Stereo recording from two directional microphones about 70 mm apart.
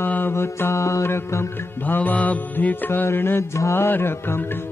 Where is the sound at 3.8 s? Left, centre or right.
Left.